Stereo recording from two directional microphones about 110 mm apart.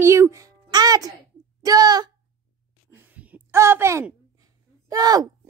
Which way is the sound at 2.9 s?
15° right (ahead or behind).